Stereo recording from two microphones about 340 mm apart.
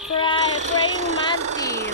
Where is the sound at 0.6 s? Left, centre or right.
Right.